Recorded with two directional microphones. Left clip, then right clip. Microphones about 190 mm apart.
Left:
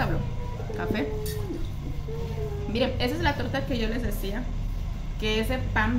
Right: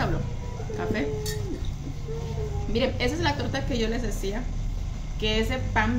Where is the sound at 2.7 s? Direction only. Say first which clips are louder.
Right 1 dB; centre (ahead or behind).